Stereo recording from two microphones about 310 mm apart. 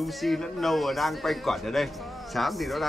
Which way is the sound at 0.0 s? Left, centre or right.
Centre.